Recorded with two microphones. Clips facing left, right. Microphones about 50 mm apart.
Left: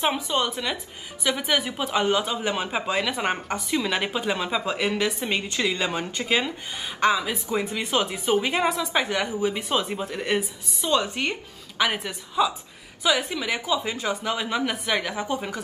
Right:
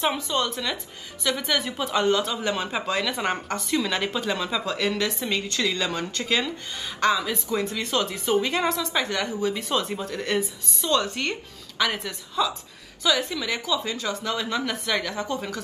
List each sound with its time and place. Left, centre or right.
0.0 s a woman's voice: centre